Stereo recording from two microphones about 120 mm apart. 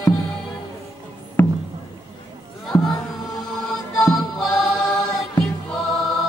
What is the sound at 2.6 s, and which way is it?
Music, centre (ahead or behind).